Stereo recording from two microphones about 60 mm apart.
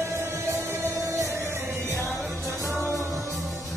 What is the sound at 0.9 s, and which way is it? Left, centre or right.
Music, right.